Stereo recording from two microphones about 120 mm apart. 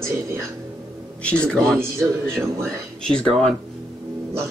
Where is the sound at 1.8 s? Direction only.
20° right (ahead or behind).